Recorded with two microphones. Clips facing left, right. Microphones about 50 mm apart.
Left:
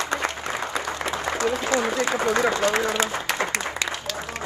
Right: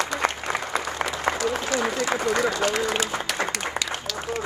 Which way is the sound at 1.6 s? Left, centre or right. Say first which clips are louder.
Left 2 dB; left.